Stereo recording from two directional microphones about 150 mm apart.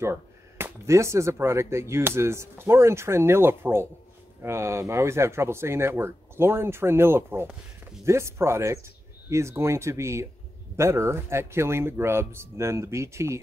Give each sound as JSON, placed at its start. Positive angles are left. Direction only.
{"t": 0.0, "sound": "speech", "side_deg": -15}